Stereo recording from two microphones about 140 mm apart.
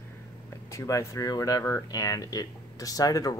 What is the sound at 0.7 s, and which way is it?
Speech, 25° left (ahead or behind).